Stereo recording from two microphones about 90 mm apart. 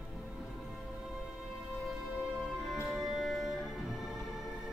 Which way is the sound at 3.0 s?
Centre (ahead or behind).